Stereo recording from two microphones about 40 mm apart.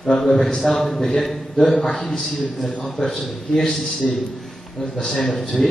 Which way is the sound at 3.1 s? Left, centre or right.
Centre.